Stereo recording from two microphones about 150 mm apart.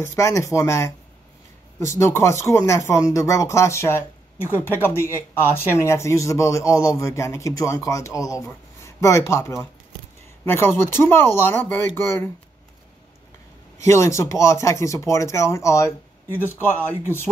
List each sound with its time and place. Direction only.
0.0 s speech: 20° left (ahead or behind)
13.7 s speech: 20° left (ahead or behind)